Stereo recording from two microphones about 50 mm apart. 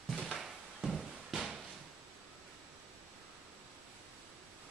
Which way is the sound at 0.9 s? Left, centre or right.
Centre.